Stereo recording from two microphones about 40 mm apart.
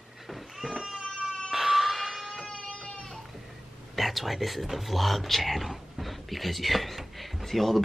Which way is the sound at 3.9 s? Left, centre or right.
Centre.